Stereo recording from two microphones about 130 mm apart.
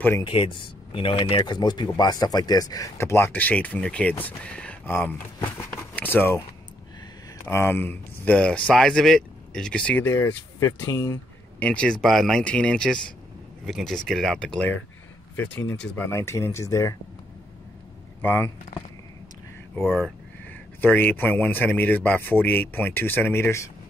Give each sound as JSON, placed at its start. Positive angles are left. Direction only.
{"t": 0.2, "sound": "speech", "side_deg": 40}
{"t": 7.4, "sound": "speech", "side_deg": 15}
{"t": 11.6, "sound": "speech", "side_deg": 10}
{"t": 18.2, "sound": "speech", "side_deg": 15}
{"t": 19.7, "sound": "speech", "side_deg": 15}